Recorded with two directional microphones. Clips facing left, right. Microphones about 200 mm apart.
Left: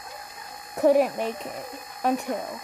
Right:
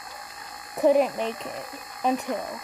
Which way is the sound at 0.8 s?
10° left (ahead or behind).